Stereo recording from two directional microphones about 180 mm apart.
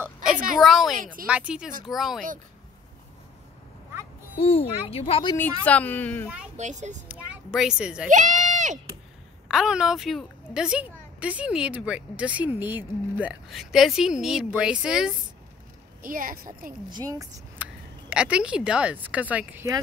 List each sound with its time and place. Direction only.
0.0 s a sound: 5° right (ahead or behind)
0.6 s a woman's voice: centre (ahead or behind)
0.9 s a woman's voice: 50° right (ahead or behind)
1.2 s a woman's voice: 5° right (ahead or behind)
4.4 s speech: 30° left (ahead or behind)
5.3 s a woman's voice: 10° left (ahead or behind)
6.5 s speech: 40° right (ahead or behind)
7.1 s a woman's voice: 5° right (ahead or behind)
8.1 s speech: 45° right (ahead or behind)
9.5 s a woman's voice: 5° right (ahead or behind)
16.0 s a woman's voice: 50° right (ahead or behind)
16.9 s speech: 20° right (ahead or behind)
18.1 s speech: 5° right (ahead or behind)